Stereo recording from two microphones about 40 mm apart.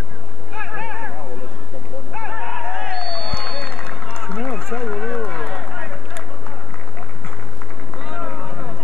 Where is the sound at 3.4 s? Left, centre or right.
Centre.